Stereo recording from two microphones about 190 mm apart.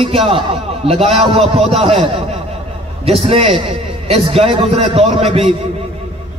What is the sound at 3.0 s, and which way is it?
A man's voice, 30° right (ahead or behind).